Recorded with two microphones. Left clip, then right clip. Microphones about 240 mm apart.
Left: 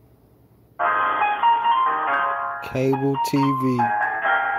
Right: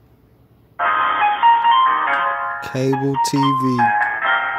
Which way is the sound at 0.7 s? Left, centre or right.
Right.